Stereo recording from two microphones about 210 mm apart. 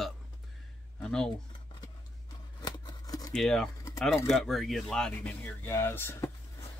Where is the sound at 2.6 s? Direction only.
20° left (ahead or behind).